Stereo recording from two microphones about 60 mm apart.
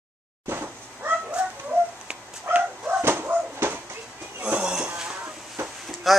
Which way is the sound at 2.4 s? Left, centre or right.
Right.